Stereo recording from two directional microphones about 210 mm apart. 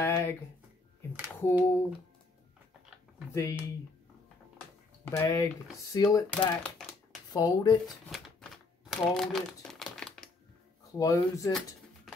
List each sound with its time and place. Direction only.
0.0 s a sound: 10° left (ahead or behind)
1.1 s a sound: 10° right (ahead or behind)
3.3 s speech: 15° left (ahead or behind)
5.0 s speech: 15° left (ahead or behind)
9.1 s crumpling: centre (ahead or behind)
11.0 s speech: 15° left (ahead or behind)